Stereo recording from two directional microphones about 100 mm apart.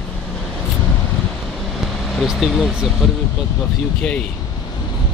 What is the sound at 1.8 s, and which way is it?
Speech, centre (ahead or behind).